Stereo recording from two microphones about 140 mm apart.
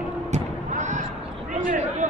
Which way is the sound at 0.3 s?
60° right (ahead or behind).